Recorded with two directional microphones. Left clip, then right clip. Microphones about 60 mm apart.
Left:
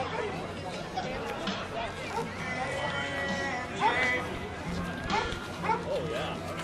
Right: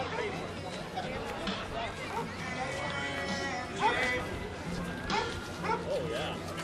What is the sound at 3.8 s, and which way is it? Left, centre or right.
Music, left.